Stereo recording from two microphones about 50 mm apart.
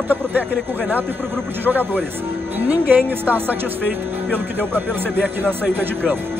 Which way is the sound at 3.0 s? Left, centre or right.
Right.